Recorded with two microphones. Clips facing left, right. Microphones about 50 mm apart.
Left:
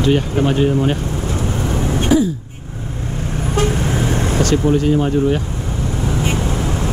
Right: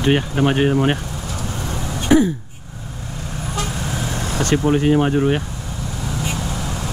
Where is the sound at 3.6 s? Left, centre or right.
Left.